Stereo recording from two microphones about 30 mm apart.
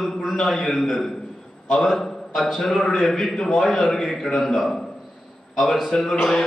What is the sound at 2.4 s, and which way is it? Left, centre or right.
A man's voice, centre.